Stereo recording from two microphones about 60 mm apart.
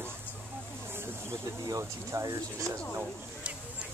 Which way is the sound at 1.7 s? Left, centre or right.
Right.